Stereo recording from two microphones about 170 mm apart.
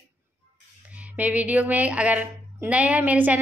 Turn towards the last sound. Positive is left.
turn(degrees=-10)  # may be behind; listen again after turning